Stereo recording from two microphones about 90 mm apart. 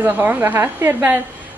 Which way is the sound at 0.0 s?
20° right (ahead or behind).